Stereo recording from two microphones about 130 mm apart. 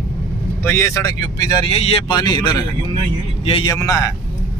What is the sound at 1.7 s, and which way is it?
Speech, 50° left (ahead or behind).